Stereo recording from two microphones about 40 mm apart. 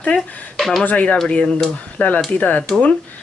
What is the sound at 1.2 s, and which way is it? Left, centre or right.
Speech, left.